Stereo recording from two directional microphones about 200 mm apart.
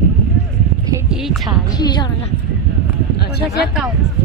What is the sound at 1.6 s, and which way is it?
Speech, 20° left (ahead or behind).